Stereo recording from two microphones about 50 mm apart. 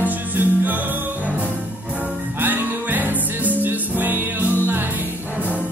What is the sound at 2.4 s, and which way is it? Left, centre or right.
Music, right.